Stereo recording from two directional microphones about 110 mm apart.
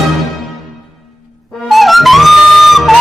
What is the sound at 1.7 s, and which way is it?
Music, centre (ahead or behind).